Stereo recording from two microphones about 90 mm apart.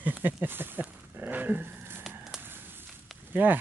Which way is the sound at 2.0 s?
Centre (ahead or behind).